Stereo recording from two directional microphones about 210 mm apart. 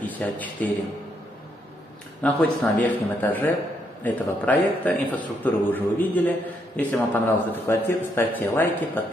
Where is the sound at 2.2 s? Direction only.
5° left (ahead or behind).